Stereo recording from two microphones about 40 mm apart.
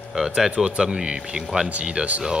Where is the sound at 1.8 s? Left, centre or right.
Right.